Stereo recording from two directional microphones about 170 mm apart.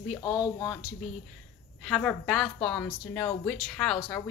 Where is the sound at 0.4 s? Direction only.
25° left (ahead or behind).